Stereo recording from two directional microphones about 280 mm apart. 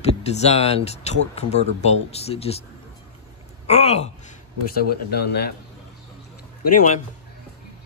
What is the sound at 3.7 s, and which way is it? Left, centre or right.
Speech, left.